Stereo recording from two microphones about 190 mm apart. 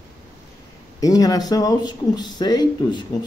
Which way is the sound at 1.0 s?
20° left (ahead or behind).